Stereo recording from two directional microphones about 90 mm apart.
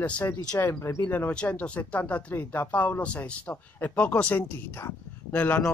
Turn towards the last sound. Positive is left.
turn(degrees=20)  # may be behind; listen again after turning